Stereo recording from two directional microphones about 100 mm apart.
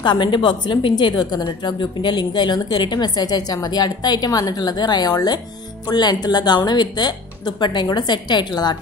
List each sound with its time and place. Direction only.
0.0 s a woman's voice: 50° left (ahead or behind)